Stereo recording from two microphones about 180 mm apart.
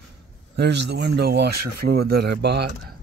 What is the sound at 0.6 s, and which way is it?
Speech, 70° right (ahead or behind).